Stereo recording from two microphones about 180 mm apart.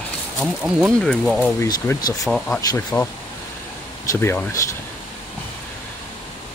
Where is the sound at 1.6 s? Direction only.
20° left (ahead or behind).